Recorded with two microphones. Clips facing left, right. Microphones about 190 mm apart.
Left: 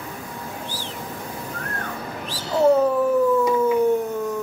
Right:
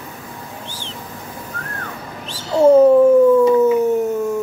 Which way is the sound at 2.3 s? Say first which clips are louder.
Right 6 dB; 25° right (ahead or behind).